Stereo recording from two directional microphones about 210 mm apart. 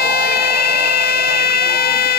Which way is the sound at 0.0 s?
50° left (ahead or behind).